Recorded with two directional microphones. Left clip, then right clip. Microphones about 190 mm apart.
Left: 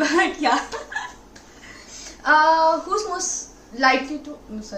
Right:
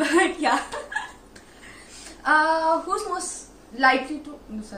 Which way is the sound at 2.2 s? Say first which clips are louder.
Left 3 dB; 15° left (ahead or behind).